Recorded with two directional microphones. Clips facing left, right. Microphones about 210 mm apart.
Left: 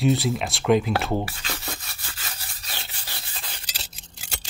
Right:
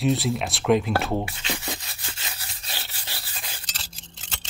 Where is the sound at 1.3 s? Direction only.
20° right (ahead or behind).